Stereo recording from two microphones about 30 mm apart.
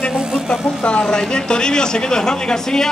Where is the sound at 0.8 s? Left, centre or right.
Left.